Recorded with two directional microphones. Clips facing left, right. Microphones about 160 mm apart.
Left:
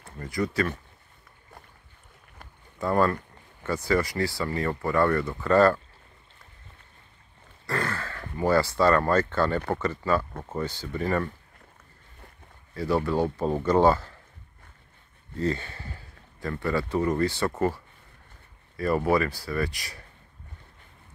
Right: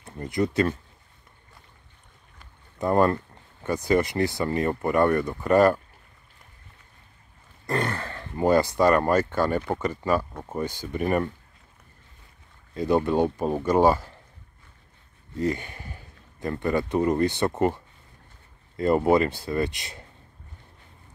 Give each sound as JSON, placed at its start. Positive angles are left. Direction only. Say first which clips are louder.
{"t": 0.0, "sound": "speech", "louder": "right 3 dB", "side_deg": -20}
{"t": 2.4, "sound": "rowboat", "louder": "left 5 dB", "side_deg": 55}
{"t": 2.8, "sound": "speech", "louder": "right 3 dB", "side_deg": -20}
{"t": 7.6, "sound": "speech", "louder": "right 3 dB", "side_deg": -20}
{"t": 12.7, "sound": "speech", "louder": "right 3 dB", "side_deg": -20}
{"t": 15.3, "sound": "a man's voice", "louder": "right 1 dB", "side_deg": -15}